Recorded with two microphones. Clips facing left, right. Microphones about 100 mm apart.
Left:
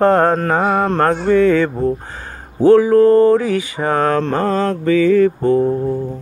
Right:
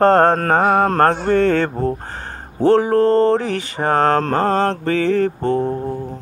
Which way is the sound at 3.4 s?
55° right (ahead or behind).